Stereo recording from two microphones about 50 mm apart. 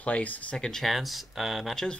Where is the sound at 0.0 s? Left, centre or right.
Left.